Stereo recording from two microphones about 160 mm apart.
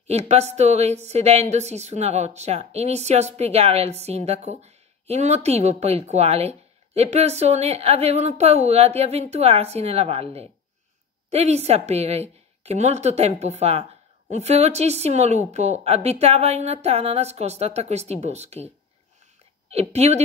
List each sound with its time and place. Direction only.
0.0 s a woman's voice: 45° right (ahead or behind)
19.7 s a woman's voice: 40° right (ahead or behind)